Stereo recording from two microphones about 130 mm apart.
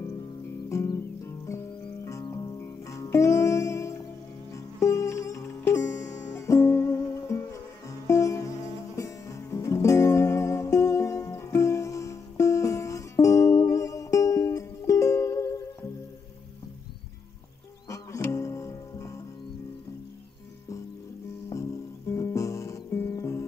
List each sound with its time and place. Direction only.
0.7 s music: 25° left (ahead or behind)
17.8 s music: 25° left (ahead or behind)
21.5 s music: 25° left (ahead or behind)